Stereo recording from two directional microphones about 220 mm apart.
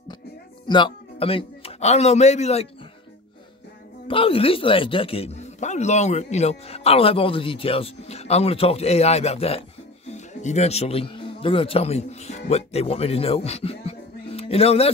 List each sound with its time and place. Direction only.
0.7 s speech: 20° left (ahead or behind)
4.1 s a man's voice: 25° left (ahead or behind)